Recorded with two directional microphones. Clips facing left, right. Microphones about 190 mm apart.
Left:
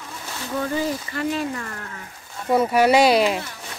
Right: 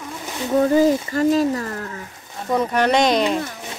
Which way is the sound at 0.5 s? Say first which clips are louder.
Right 9 dB; 40° right (ahead or behind).